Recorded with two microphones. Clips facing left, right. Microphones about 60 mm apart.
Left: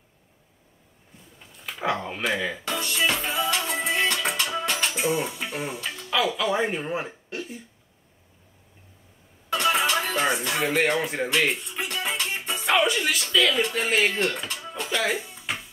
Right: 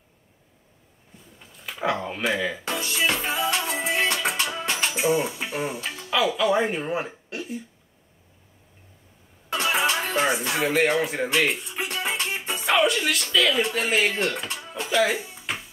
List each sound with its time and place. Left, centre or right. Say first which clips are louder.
1.4 s music: right 2 dB; centre
9.5 s music: left 1 dB; centre